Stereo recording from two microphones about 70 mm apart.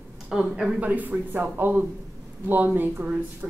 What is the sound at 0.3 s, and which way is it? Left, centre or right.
Speech, centre.